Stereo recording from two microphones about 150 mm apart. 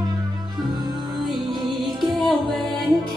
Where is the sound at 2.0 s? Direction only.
Centre (ahead or behind).